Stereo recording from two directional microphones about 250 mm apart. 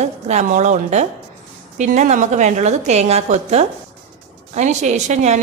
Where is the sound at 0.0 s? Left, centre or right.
Right.